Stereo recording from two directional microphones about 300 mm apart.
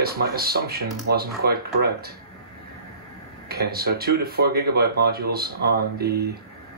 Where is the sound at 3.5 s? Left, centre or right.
Right.